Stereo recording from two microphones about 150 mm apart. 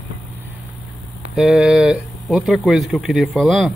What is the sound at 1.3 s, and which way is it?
Speech, 5° right (ahead or behind).